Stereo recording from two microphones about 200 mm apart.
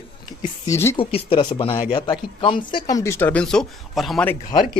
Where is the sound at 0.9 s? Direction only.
25° left (ahead or behind); by 4.4 s 5° left (ahead or behind).